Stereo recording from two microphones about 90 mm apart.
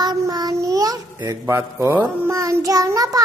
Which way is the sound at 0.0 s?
50° right (ahead or behind).